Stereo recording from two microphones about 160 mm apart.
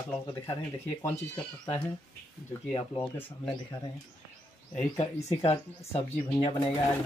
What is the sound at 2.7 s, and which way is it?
Speech, 35° left (ahead or behind).